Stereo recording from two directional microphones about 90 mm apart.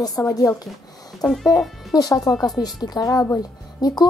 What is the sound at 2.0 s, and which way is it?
Speech, 45° left (ahead or behind).